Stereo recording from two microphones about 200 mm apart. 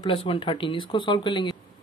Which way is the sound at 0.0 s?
25° left (ahead or behind).